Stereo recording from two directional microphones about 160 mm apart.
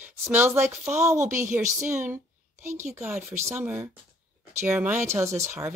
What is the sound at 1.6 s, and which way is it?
Speech, 50° right (ahead or behind).